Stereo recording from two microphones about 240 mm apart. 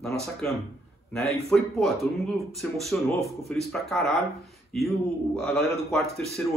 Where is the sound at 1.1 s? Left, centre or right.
Centre.